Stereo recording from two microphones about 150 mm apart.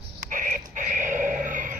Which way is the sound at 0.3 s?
60° right (ahead or behind).